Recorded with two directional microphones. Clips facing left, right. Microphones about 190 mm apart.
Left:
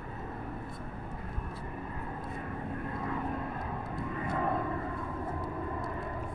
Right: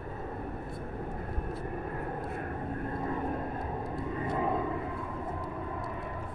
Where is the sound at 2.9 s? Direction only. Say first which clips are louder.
Right 3 dB; 35° right (ahead or behind).